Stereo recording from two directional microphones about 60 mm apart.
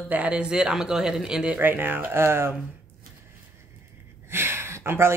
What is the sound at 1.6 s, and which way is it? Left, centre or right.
Speech, right.